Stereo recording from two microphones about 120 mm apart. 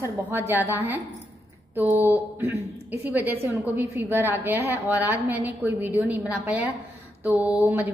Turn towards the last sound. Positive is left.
turn(degrees=-15)  # may be behind; listen again after turning